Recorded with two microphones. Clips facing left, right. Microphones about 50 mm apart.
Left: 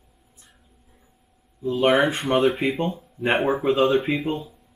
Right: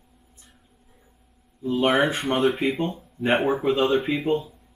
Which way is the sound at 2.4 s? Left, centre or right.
Centre.